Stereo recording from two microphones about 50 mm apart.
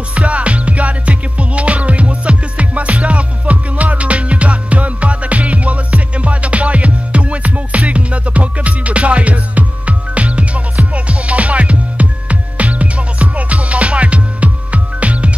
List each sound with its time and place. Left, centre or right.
0.1 s music: right